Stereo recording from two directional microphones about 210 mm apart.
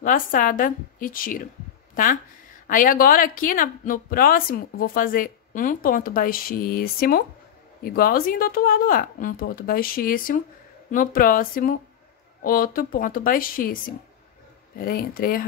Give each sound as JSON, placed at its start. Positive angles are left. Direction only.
{"t": 0.0, "sound": "speech", "side_deg": 40}
{"t": 2.6, "sound": "speech", "side_deg": 40}